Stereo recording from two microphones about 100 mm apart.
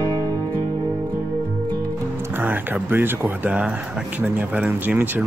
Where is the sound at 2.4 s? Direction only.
20° right (ahead or behind).